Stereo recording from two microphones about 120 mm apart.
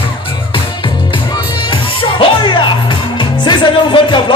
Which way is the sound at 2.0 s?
45° left (ahead or behind).